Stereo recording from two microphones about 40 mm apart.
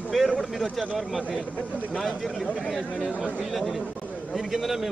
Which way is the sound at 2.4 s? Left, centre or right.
Left.